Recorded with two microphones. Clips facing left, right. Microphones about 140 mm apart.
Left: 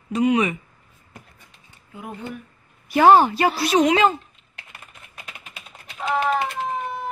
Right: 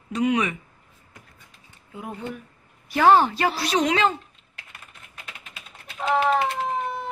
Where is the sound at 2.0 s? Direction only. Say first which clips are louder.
Even; 5° left (ahead or behind).